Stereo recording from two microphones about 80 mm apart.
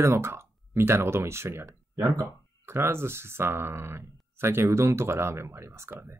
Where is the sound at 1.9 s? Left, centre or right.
Right.